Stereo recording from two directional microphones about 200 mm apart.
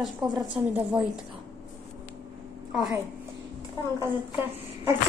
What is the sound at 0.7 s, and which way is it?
Speech, 5° right (ahead or behind).